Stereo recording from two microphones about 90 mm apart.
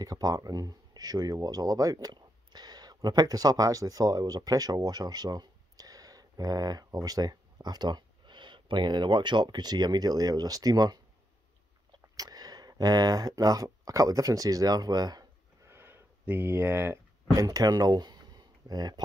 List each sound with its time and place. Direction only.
0.0 s speech: 45° right (ahead or behind)
12.2 s speech: 45° right (ahead or behind)
15.7 s a sound: 25° right (ahead or behind); by 18.9 s 50° right (ahead or behind)